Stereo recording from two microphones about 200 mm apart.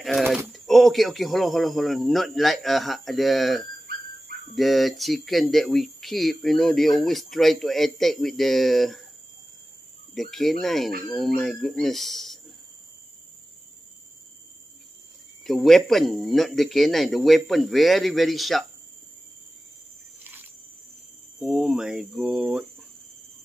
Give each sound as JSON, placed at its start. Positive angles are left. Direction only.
{"t": 0.0, "sound": "pigeon", "side_deg": 0}
{"t": 0.5, "sound": "speech", "side_deg": 0}
{"t": 10.1, "sound": "speech", "side_deg": 0}
{"t": 15.4, "sound": "speech", "side_deg": 0}
{"t": 21.4, "sound": "speech", "side_deg": 0}